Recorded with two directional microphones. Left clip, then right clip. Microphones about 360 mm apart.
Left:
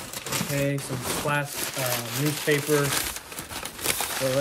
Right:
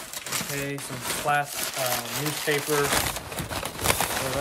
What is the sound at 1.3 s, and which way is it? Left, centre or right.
Speech, centre.